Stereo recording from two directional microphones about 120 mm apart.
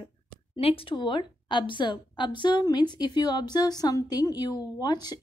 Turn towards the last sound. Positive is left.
turn(degrees=35)  # may be behind; listen again after turning